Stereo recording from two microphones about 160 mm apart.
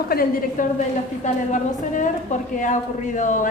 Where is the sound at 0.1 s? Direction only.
65° left (ahead or behind).